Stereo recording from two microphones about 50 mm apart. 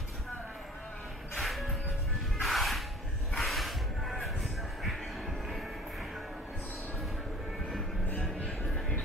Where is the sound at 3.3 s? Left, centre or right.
Centre.